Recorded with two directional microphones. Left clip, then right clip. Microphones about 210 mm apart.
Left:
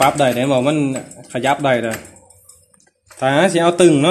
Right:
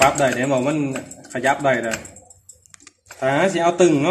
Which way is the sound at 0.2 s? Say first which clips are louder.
Left 4 dB; 50° left (ahead or behind).